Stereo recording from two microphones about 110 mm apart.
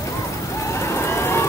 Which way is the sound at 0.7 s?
25° left (ahead or behind).